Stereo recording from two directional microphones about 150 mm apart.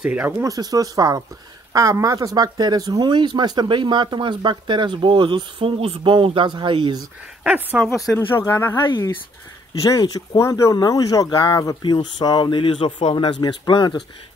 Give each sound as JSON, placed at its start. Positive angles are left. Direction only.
{"t": 0.0, "sound": "speech", "side_deg": -10}
{"t": 0.5, "sound": "speech", "side_deg": -25}
{"t": 7.4, "sound": "speech", "side_deg": -10}
{"t": 8.1, "sound": "speech", "side_deg": 15}
{"t": 8.8, "sound": "speech", "side_deg": 30}